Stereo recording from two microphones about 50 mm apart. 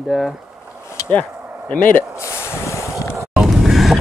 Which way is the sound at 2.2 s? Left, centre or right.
Left.